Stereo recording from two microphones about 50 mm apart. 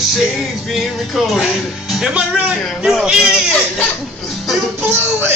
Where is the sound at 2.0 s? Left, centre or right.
Right.